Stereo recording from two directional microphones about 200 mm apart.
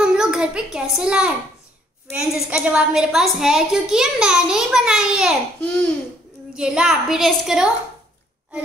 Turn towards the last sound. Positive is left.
turn(degrees=0)  # may be behind; listen again after turning